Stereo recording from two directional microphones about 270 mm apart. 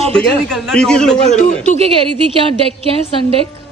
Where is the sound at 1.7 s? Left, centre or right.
Right.